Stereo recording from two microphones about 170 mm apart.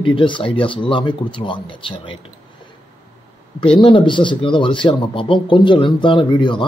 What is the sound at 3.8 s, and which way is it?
A man's voice, 30° left (ahead or behind).